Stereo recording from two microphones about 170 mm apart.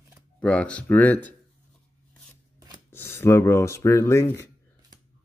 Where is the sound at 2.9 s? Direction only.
15° left (ahead or behind).